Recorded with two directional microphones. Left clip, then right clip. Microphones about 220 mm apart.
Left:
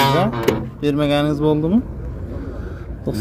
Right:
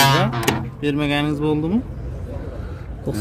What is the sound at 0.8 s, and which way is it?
Speech, 5° left (ahead or behind).